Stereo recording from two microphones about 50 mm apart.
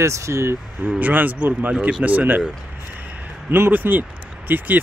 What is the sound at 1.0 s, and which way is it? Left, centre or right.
Speech, right.